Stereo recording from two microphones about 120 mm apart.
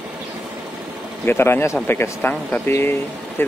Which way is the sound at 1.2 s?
20° left (ahead or behind).